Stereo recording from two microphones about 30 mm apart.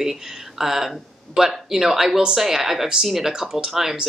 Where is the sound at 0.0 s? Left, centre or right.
Centre.